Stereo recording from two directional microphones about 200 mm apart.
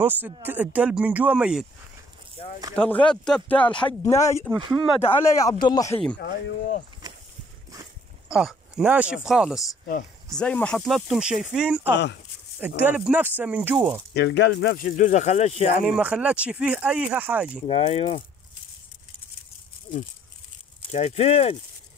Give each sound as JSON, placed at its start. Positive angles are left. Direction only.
{"t": 0.0, "sound": "speech", "side_deg": -10}
{"t": 2.7, "sound": "speech", "side_deg": 5}
{"t": 4.6, "sound": "speech", "side_deg": -25}
{"t": 5.0, "sound": "speech", "side_deg": 15}
{"t": 6.1, "sound": "speech", "side_deg": 50}
{"t": 8.3, "sound": "speech", "side_deg": -5}
{"t": 14.1, "sound": "speech", "side_deg": 60}
{"t": 15.8, "sound": "speech", "side_deg": -5}
{"t": 17.6, "sound": "speech", "side_deg": 30}
{"t": 20.9, "sound": "speech", "side_deg": 30}